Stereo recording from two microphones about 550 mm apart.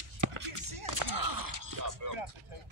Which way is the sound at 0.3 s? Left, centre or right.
Right.